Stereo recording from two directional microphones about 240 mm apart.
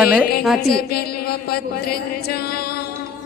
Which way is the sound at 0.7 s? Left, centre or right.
Left.